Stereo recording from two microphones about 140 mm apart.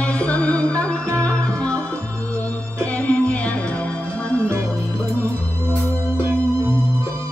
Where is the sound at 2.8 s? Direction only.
10° left (ahead or behind).